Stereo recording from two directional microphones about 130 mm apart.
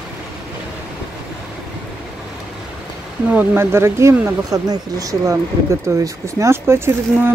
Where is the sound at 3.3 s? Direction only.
15° right (ahead or behind).